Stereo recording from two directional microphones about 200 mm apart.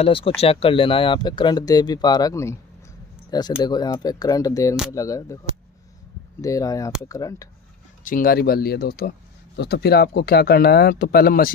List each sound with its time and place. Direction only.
0.0 s speech: 25° left (ahead or behind)
6.4 s speech: 15° left (ahead or behind)
8.0 s speech: 45° left (ahead or behind)